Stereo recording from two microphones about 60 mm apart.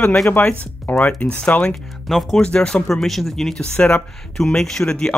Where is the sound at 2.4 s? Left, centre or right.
Centre.